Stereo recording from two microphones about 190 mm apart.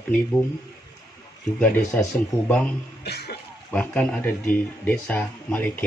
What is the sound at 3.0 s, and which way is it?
Speech, 60° left (ahead or behind).